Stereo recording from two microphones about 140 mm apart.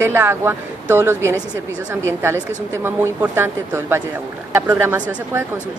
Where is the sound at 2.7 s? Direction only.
15° right (ahead or behind).